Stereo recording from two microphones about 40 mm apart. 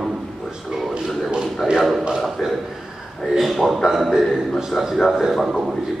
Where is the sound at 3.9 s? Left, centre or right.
Centre.